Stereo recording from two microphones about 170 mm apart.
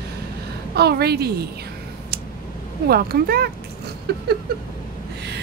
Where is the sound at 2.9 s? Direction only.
65° right (ahead or behind).